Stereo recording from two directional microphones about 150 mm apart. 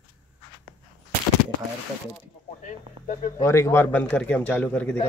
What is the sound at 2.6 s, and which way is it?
Speech, 50° left (ahead or behind).